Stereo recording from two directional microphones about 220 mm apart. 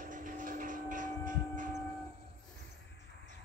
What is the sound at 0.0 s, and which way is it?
Printer, 35° right (ahead or behind).